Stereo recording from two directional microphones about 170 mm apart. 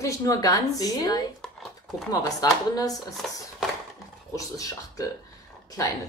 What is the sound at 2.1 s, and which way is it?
Speech, 20° left (ahead or behind).